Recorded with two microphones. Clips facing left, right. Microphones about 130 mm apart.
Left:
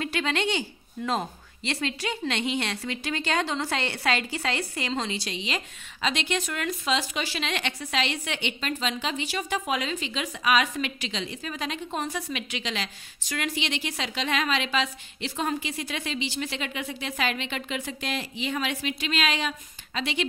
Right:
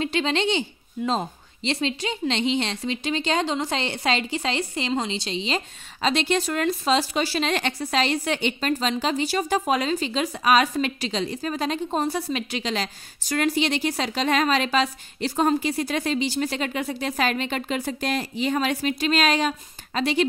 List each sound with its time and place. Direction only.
0.0 s a woman's voice: 25° right (ahead or behind); by 20.2 s 40° right (ahead or behind)